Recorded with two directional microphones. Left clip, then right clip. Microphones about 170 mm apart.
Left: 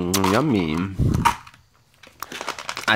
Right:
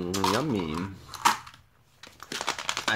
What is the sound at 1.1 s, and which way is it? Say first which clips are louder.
Dog: left 4 dB; 15° left (ahead or behind).